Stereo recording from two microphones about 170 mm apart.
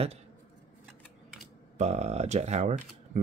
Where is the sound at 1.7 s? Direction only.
40° right (ahead or behind).